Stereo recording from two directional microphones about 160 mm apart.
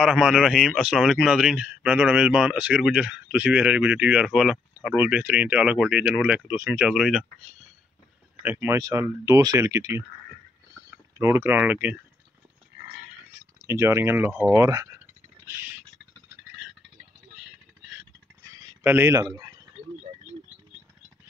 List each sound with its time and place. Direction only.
0.0 s a man's voice: 5° right (ahead or behind)
8.4 s speech: 10° right (ahead or behind)
11.1 s speech: 15° right (ahead or behind)
13.6 s speech: 15° right (ahead or behind)
18.8 s speech: 15° right (ahead or behind)